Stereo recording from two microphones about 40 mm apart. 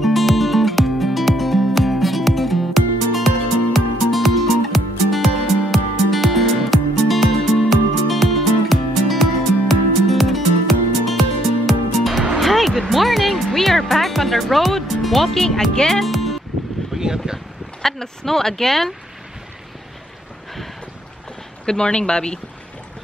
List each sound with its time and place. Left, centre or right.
0.0 s music: centre
15.4 s speech: centre
15.9 s music: centre
16.9 s a sound: centre
17.8 s speech: centre
21.6 s speech: left